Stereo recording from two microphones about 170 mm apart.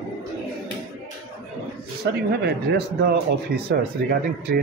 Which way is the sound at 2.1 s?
90° right.